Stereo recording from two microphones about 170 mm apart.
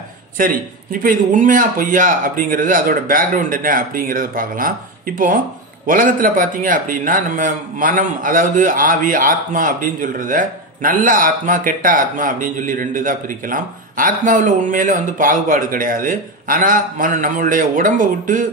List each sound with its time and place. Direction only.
0.4 s a man's voice: 55° right (ahead or behind)